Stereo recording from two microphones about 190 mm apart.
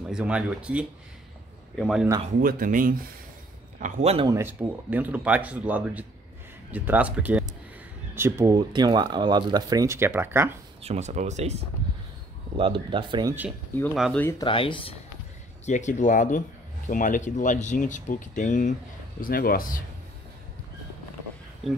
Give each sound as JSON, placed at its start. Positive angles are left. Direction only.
{"t": 0.1, "sound": "speech", "side_deg": -5}
{"t": 2.4, "sound": "speech", "side_deg": -45}
{"t": 3.8, "sound": "speech", "side_deg": -35}
{"t": 4.3, "sound": "speech", "side_deg": -10}
{"t": 10.8, "sound": "speech", "side_deg": -35}
{"t": 14.4, "sound": "speech", "side_deg": 25}
{"t": 15.6, "sound": "speech", "side_deg": 40}